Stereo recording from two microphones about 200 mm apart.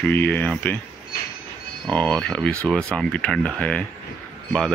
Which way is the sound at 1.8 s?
5° left (ahead or behind).